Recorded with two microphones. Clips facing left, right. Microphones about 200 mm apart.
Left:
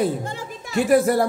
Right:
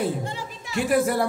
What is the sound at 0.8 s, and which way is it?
Speech, 40° left (ahead or behind).